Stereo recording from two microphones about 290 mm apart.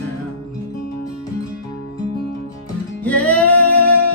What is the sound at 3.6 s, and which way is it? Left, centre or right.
Music, left.